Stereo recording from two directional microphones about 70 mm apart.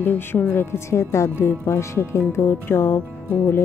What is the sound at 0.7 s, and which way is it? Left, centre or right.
Speech, left.